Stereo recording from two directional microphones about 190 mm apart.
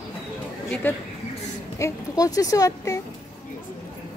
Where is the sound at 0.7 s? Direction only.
10° left (ahead or behind).